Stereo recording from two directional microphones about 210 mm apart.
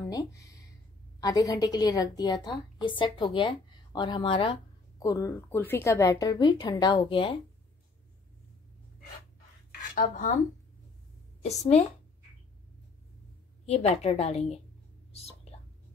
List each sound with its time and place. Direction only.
0.1 s a sound: 15° left (ahead or behind)
1.2 s a woman's voice: 15° left (ahead or behind)
9.9 s a woman's voice: 40° left (ahead or behind)
13.7 s a woman's voice: 30° left (ahead or behind)
15.1 s whispering: 30° left (ahead or behind)